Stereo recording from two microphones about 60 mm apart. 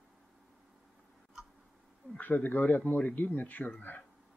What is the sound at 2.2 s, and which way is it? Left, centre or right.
Speech, left.